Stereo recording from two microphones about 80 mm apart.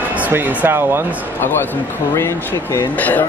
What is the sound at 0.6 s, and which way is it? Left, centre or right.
Speech, right.